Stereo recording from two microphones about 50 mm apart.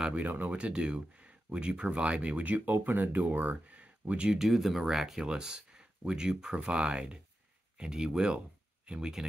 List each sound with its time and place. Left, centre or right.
0.1 s speech: right
0.5 s speech: right
4.3 s speech: centre